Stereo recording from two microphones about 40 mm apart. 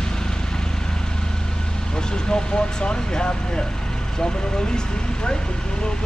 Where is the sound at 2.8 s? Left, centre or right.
Left.